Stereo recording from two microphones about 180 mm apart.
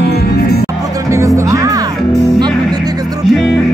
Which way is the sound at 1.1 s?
15° right (ahead or behind).